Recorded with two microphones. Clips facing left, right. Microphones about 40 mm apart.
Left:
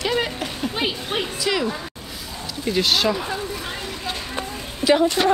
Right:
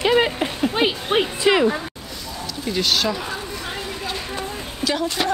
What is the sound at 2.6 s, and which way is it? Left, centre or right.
Speech, centre.